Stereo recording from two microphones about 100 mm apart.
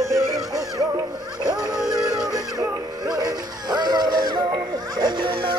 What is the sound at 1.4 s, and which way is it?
Synthetic singing, 5° right (ahead or behind).